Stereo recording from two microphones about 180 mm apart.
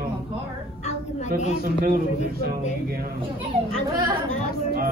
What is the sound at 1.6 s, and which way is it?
Speech, 55° right (ahead or behind).